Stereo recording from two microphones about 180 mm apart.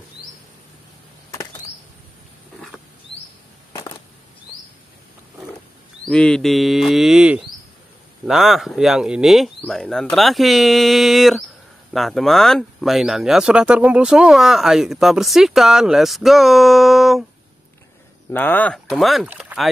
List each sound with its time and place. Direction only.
3.7 s a sound: 20° left (ahead or behind)
6.0 s speech: 5° left (ahead or behind)
18.3 s speech: 10° left (ahead or behind)